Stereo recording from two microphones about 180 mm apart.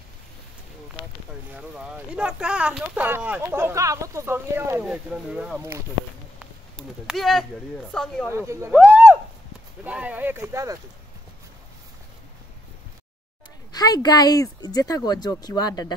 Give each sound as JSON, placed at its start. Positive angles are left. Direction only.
{"t": 1.5, "sound": "speech", "side_deg": -5}
{"t": 8.3, "sound": "speech", "side_deg": -15}
{"t": 13.7, "sound": "speech", "side_deg": 20}